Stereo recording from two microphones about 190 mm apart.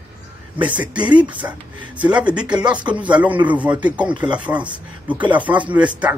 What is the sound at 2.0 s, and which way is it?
Speech, 5° right (ahead or behind).